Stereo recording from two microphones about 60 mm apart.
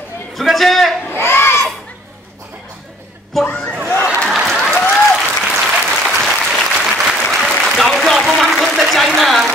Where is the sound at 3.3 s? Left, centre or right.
Centre.